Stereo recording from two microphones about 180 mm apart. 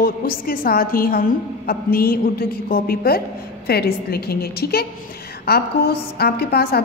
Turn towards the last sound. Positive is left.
turn(degrees=60)  # may be behind; listen again after turning